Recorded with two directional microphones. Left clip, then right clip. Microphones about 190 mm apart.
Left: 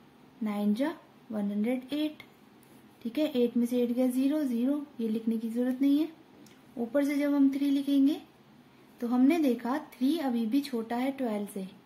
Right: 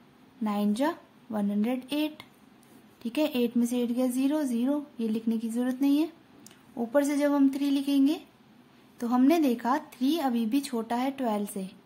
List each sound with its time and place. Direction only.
0.4 s a woman's voice: 30° right (ahead or behind)